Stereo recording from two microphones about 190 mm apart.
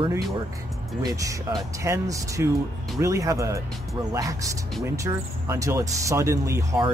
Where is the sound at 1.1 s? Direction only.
15° right (ahead or behind).